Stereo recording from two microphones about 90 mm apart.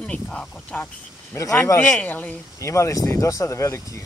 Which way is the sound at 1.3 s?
30° left (ahead or behind).